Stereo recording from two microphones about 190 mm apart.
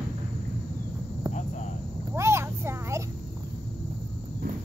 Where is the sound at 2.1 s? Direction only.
15° right (ahead or behind).